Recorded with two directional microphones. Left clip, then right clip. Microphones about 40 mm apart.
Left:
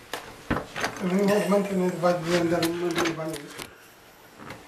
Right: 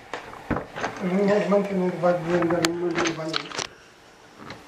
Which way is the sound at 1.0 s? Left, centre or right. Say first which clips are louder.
Right 2 dB; left.